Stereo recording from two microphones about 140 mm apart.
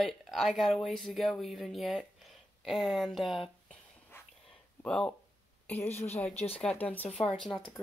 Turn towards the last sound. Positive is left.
turn(degrees=5)  # may be behind; listen again after turning